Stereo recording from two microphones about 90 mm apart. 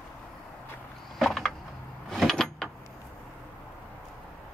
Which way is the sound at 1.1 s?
5° left (ahead or behind).